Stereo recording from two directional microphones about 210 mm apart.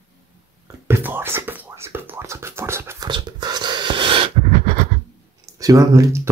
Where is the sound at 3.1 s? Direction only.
20° right (ahead or behind).